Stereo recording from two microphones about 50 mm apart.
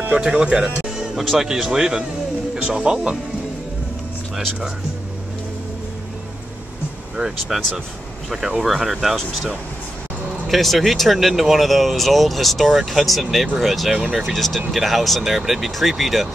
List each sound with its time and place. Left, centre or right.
0.2 s a man's voice: centre
0.8 s music: centre
1.2 s a man's voice: centre
7.2 s a man's voice: centre
10.4 s speech: centre